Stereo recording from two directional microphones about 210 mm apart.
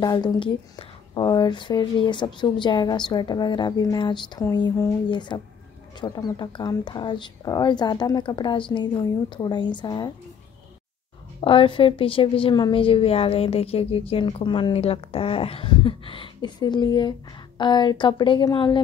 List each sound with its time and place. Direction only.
0.0 s a woman's voice: 20° left (ahead or behind)
11.4 s a woman's voice: 25° left (ahead or behind)